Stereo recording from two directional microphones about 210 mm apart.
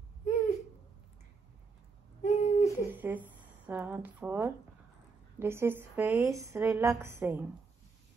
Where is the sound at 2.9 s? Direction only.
10° right (ahead or behind).